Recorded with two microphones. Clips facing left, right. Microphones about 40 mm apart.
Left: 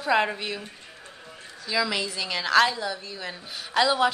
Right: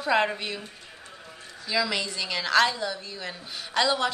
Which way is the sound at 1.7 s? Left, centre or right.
Centre.